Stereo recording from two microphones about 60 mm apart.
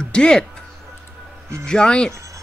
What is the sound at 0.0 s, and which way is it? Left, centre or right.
Speech, centre.